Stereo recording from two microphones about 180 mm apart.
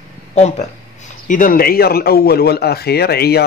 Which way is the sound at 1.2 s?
50° left (ahead or behind).